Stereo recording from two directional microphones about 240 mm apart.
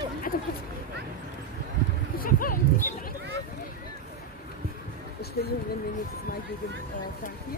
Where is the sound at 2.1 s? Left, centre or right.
Left.